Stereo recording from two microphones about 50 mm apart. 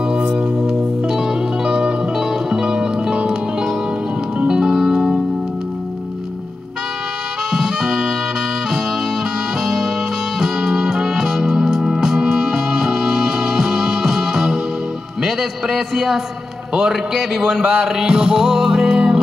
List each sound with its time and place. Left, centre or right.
0.3 s music: centre
7.5 s music: centre
10.4 s music: centre
15.2 s a sound: centre
16.7 s music: centre